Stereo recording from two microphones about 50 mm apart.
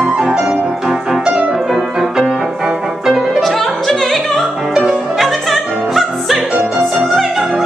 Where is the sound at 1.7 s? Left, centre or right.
Centre.